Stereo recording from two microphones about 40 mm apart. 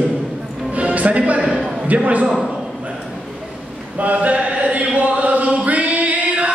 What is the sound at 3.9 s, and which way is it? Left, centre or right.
Chant, right.